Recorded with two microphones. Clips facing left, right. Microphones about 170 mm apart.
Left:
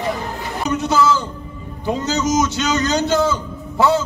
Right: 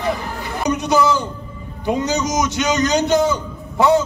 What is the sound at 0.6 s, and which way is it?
A man's voice, 15° right (ahead or behind).